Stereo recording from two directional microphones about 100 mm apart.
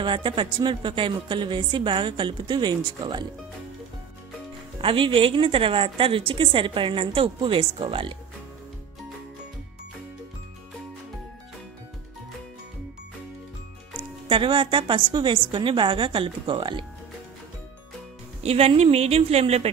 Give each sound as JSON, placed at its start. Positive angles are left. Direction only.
{"t": 0.0, "sound": "speech", "side_deg": -55}
{"t": 4.8, "sound": "a woman's voice", "side_deg": -60}
{"t": 14.3, "sound": "a woman's voice", "side_deg": -60}
{"t": 18.4, "sound": "speech", "side_deg": -85}